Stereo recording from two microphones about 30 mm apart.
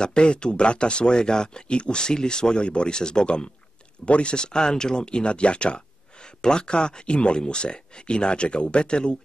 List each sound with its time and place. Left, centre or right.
0.0 s speech: left
2.6 s speech: left
2.9 s speech: left
4.0 s speech: left
6.4 s speech: left